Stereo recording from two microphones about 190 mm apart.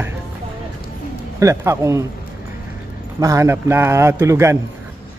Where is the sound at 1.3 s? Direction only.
15° right (ahead or behind).